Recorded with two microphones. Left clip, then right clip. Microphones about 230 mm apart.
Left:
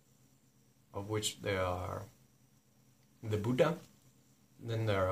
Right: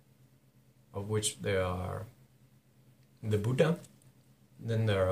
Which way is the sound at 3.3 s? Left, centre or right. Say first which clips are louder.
Right 2 dB; centre.